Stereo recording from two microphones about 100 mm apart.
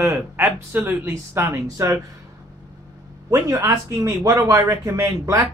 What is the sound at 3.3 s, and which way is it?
A man's voice, 35° right (ahead or behind).